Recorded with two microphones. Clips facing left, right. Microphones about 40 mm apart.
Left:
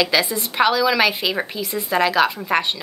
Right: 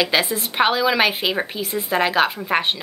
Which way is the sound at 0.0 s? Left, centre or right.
Right.